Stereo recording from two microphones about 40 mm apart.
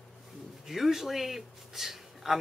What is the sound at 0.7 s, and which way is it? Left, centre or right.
A man's voice, centre.